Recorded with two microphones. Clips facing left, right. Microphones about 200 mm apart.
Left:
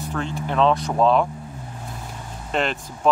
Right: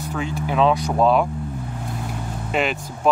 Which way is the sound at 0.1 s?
5° right (ahead or behind).